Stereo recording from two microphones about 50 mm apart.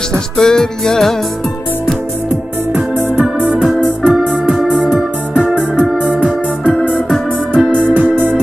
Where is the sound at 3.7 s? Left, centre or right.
Centre.